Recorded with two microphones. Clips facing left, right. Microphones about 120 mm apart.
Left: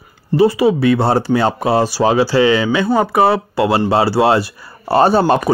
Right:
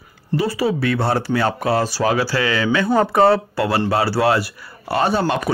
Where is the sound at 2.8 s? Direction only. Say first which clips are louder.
Right 1 dB; 5° left (ahead or behind).